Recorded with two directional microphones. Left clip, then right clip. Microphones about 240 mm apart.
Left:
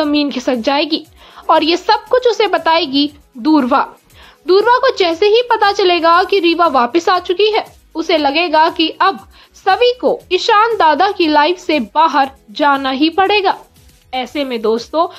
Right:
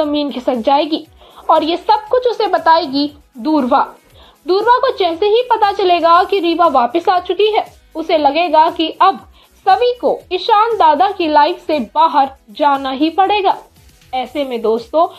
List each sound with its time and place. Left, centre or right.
0.0 s a woman's voice: left
2.2 s a woman's voice: left
3.4 s a woman's voice: left